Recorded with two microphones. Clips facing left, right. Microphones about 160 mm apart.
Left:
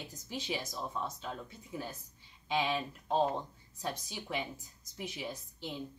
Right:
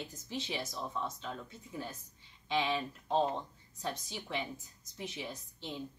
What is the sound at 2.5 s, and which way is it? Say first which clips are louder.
Speech: even; 15° left (ahead or behind).